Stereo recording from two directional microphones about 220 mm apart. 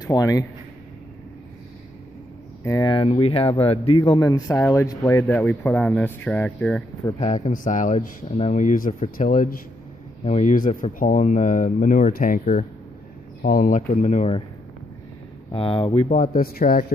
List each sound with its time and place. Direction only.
0.0 s a man's voice: 15° left (ahead or behind)
2.6 s speech: 15° left (ahead or behind)
7.2 s speech: 30° left (ahead or behind)
15.5 s speech: 25° left (ahead or behind); by 16.8 s 40° left (ahead or behind)